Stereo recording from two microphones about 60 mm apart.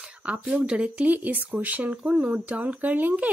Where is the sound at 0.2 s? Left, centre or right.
Right.